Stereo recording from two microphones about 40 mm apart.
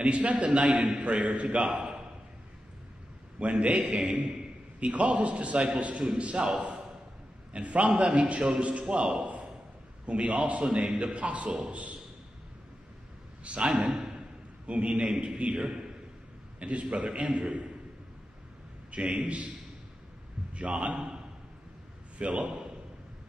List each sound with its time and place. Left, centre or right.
0.0 s a man's voice: right
1.6 s a man's voice: right
3.3 s a man's voice: right
6.4 s a man's voice: centre
7.5 s a man's voice: right
9.1 s a sound: right
10.0 s a man's voice: right
13.4 s a man's voice: right
13.9 s a sound: centre
14.7 s a man's voice: right
18.9 s a man's voice: right
20.5 s a man's voice: right
22.2 s a man's voice: right